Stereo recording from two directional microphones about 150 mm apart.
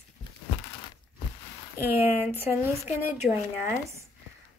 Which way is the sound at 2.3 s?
15° right (ahead or behind).